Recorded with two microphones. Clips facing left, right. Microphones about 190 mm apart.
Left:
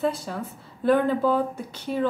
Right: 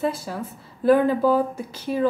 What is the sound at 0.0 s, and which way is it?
A woman's voice, 5° right (ahead or behind).